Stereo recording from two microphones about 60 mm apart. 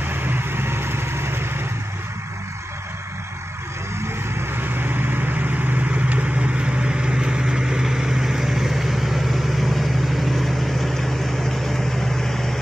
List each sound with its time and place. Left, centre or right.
0.0 s vehicle: right
4.4 s vehicle: right; by 12.5 s centre